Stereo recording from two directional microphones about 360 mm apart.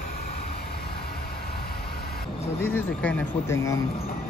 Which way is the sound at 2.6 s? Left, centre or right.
Centre.